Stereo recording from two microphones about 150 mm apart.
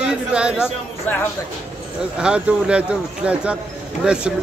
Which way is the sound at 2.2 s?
5° right (ahead or behind).